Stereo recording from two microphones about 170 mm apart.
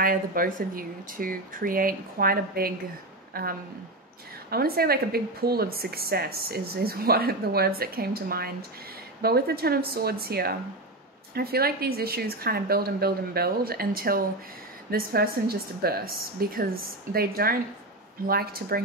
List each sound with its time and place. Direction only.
0.0 s speech: 55° right (ahead or behind)